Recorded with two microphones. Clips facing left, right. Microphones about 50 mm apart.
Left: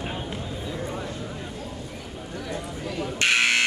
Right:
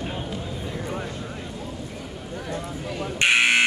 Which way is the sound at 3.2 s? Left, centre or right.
Centre.